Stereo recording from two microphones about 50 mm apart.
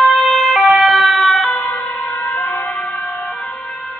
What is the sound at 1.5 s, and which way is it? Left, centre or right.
Emergency vehicle, centre.